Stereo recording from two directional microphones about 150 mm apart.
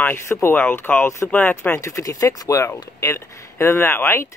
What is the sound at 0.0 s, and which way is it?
Speech, 15° left (ahead or behind).